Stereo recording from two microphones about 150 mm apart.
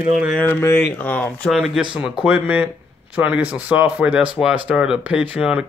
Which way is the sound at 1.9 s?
5° right (ahead or behind).